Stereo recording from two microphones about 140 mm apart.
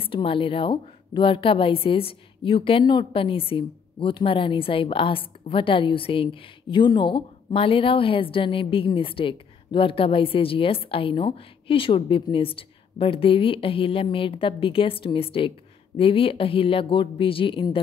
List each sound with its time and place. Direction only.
0.0 s a woman's voice: 40° left (ahead or behind)